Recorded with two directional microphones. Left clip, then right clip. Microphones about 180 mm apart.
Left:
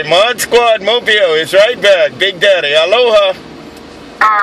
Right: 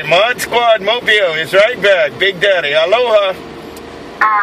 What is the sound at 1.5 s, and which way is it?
Speech, 40° left (ahead or behind).